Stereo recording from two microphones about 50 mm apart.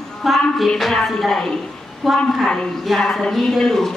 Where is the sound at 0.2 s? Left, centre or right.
Centre.